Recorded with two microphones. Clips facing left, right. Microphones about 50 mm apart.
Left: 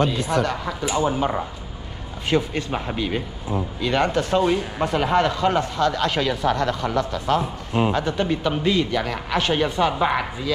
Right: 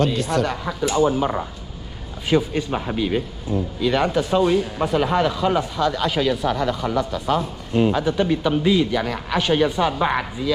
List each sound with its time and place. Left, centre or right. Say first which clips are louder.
0.0 s speech: right 1 dB; centre
0.8 s speech: right 3 dB; centre
3.5 s speech: right 2 dB; left
3.8 s speech: right 1 dB; centre
4.4 s speech: right 3 dB; centre